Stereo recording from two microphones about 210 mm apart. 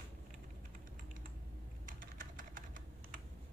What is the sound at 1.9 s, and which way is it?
Typing, 40° right (ahead or behind).